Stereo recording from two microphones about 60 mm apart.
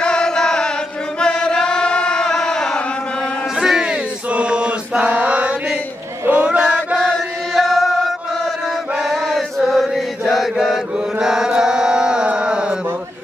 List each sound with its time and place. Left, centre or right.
0.0 s chant: centre
3.5 s music: centre
4.3 s chant: centre
6.2 s a sound: right
7.1 s chant: centre
9.1 s chant: centre